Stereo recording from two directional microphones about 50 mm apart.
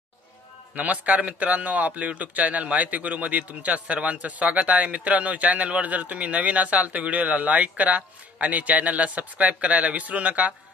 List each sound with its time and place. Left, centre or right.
0.7 s a man's voice: right